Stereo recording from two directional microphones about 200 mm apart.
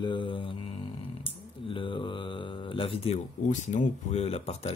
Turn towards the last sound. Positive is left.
turn(degrees=30)  # may be behind; listen again after turning